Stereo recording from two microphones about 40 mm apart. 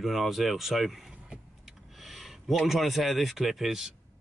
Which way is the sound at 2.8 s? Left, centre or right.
Centre.